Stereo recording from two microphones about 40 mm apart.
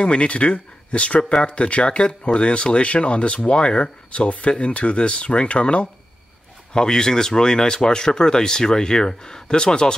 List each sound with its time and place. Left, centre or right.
0.0 s speech: left
6.7 s speech: centre